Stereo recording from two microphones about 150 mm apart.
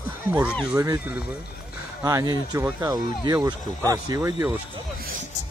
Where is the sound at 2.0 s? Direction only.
25° right (ahead or behind).